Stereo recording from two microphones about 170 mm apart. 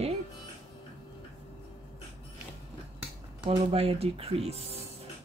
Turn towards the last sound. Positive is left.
turn(degrees=-35)  # may be behind; listen again after turning